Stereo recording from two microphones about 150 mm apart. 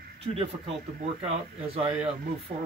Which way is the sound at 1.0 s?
45° right (ahead or behind).